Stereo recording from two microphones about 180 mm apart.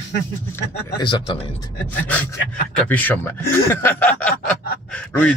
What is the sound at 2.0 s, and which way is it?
Speech, 10° left (ahead or behind).